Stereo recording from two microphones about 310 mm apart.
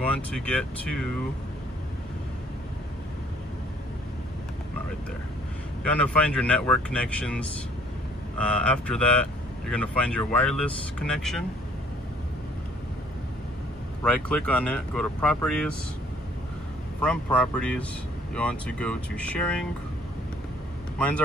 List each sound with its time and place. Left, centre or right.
0.0 s speech: centre
5.9 s speech: centre
14.0 s speech: centre
17.0 s speech: centre